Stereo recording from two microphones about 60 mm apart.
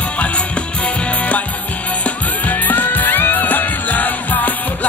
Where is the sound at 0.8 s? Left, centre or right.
Left.